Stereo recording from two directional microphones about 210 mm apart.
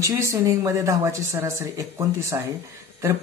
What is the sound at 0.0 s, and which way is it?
Speech, 15° right (ahead or behind).